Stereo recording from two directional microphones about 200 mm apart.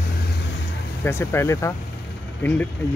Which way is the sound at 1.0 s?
10° left (ahead or behind).